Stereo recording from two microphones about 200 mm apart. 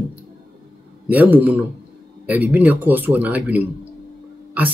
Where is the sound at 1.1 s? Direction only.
10° right (ahead or behind).